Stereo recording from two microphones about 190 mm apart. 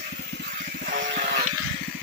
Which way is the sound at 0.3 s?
65° right (ahead or behind).